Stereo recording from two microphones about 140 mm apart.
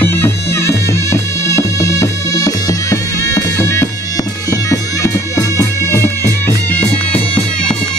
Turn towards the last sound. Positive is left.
turn(degrees=15)  # may be behind; listen again after turning